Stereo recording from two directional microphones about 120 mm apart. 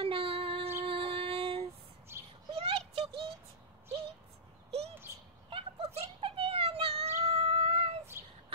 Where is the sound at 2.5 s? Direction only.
50° right (ahead or behind).